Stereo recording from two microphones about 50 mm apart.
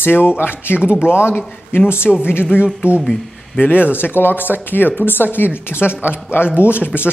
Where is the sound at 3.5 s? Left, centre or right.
Left.